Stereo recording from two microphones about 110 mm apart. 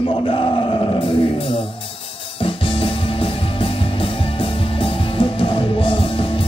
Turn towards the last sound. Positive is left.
turn(degrees=55)  # may be behind; listen again after turning